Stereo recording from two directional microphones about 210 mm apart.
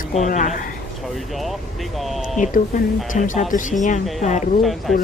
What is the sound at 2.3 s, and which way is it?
A woman's voice, 35° left (ahead or behind).